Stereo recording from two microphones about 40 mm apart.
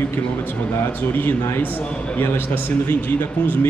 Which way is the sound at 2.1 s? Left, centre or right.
Left.